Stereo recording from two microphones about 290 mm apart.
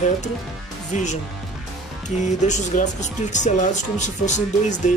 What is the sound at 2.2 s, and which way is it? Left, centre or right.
Speech, left.